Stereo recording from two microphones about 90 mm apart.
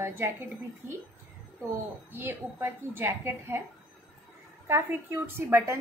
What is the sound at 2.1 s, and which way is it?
A woman's voice, 25° right (ahead or behind).